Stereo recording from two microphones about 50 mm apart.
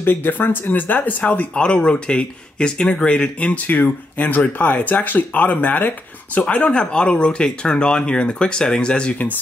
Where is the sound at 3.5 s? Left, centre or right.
Left.